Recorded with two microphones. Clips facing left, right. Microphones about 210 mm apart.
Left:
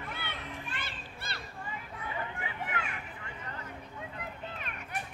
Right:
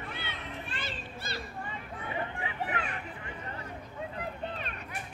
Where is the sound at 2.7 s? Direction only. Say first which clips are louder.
Right 3 dB; 35° right (ahead or behind).